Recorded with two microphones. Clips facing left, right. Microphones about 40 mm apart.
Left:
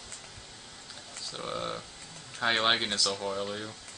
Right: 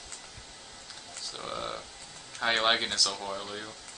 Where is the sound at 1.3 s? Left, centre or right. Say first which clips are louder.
Left 1 dB; centre.